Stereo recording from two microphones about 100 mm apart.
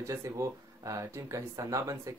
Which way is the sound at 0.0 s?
30° right (ahead or behind).